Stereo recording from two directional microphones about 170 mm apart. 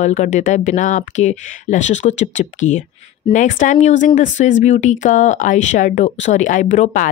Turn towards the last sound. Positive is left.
turn(degrees=45)  # may be behind; listen again after turning